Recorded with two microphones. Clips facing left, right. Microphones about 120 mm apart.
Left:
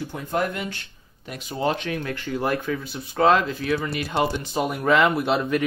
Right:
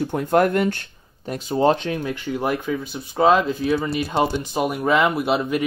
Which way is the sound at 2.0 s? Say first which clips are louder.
Right 2 dB; 15° right (ahead or behind).